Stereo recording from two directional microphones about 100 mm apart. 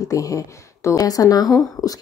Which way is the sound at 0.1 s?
35° left (ahead or behind).